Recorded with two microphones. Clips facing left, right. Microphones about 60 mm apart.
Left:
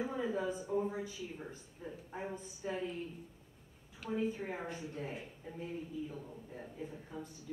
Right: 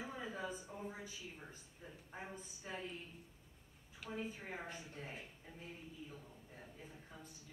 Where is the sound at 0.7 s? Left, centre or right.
Centre.